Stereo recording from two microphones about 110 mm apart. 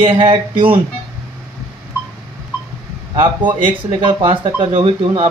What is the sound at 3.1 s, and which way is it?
Speech, 45° right (ahead or behind).